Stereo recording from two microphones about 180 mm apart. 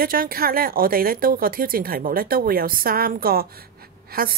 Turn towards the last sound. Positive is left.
turn(degrees=-55)  # may be behind; listen again after turning